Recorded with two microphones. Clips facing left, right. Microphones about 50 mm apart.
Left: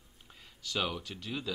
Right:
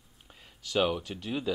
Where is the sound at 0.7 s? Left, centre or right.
Right.